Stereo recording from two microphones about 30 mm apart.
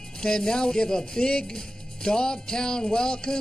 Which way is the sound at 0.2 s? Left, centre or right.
Left.